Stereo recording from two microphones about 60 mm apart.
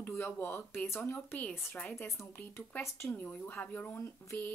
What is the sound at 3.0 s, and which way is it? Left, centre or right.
Speech, left.